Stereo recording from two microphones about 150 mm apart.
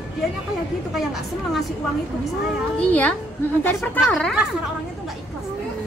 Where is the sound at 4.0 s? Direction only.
Centre (ahead or behind).